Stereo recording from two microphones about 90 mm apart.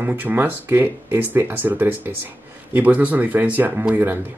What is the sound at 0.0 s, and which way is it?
Speech, 20° right (ahead or behind).